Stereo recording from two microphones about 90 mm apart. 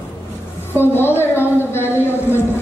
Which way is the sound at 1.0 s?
25° left (ahead or behind).